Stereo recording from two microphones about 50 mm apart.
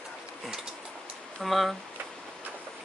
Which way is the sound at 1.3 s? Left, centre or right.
Centre.